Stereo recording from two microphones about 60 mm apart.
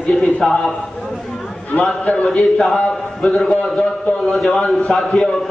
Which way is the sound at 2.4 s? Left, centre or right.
Centre.